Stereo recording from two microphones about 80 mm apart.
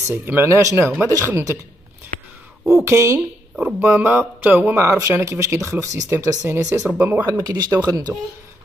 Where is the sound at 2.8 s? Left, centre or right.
Right.